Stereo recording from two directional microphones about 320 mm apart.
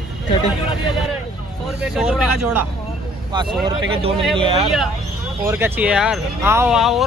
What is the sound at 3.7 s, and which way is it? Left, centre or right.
Speech, centre.